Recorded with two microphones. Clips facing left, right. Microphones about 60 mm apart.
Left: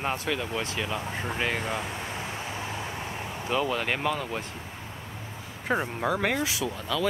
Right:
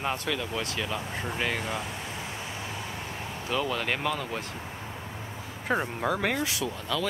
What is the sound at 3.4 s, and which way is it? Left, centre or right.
Speech, centre.